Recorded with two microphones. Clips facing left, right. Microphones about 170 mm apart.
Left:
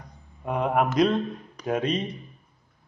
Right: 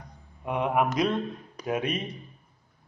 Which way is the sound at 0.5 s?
35° left (ahead or behind).